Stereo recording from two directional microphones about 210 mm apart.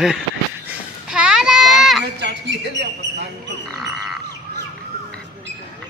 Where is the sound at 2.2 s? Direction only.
55° right (ahead or behind).